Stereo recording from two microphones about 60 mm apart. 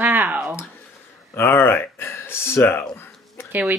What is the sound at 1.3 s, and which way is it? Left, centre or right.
Speech, left.